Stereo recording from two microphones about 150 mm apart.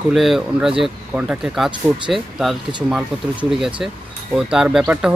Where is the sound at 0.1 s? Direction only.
Centre (ahead or behind).